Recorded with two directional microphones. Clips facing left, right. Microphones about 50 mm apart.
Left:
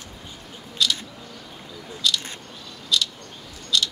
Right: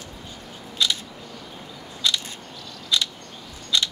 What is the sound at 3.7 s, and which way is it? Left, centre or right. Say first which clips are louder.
Scissors: even; right.